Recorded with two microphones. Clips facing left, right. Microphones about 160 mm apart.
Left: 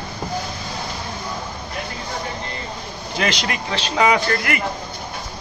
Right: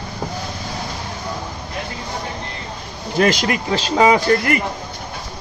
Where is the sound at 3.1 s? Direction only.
45° right (ahead or behind).